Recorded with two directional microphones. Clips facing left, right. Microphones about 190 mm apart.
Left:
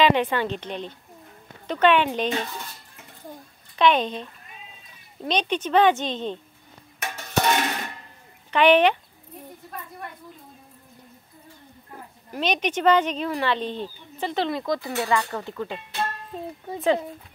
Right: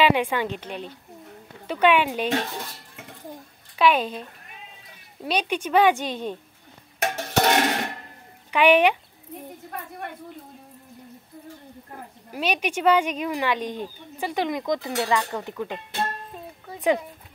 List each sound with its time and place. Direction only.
0.0 s speech: 10° right (ahead or behind)
3.7 s speech: 5° right (ahead or behind)
7.0 s a sound: 85° right
8.5 s speech: 10° right (ahead or behind)
9.7 s a woman's voice: 65° right (ahead or behind)
12.3 s speech: 10° right (ahead or behind)